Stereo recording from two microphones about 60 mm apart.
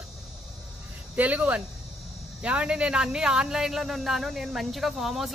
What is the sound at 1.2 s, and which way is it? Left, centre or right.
Speech, right.